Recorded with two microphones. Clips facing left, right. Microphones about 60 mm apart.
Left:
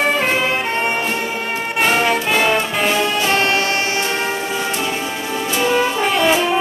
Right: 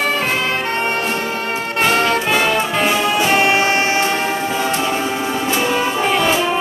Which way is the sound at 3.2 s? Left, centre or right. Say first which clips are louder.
Right 2 dB; centre.